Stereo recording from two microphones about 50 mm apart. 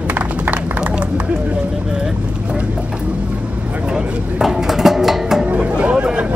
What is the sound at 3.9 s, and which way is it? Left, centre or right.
Music, centre.